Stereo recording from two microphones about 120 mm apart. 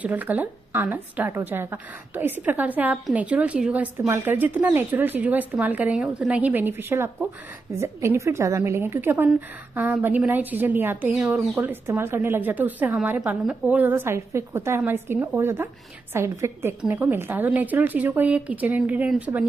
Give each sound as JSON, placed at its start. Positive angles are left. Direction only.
{"t": 0.0, "sound": "a woman's voice", "side_deg": -15}